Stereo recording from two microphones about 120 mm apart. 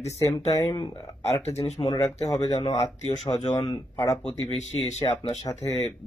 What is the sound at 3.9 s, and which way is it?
Speech, 30° left (ahead or behind).